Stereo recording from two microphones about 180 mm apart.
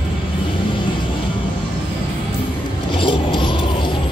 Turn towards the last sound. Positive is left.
turn(degrees=30)  # may be behind; listen again after turning